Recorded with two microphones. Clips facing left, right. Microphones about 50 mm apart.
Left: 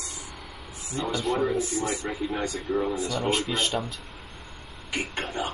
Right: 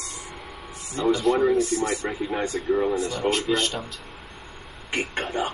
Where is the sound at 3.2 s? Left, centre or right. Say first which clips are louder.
Right 2 dB; centre.